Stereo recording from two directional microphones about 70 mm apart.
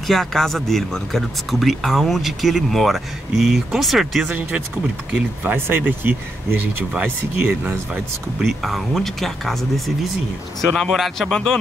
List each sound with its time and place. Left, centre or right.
0.0 s speech: centre
4.3 s speech: centre
5.4 s speech: right
7.9 s speech: centre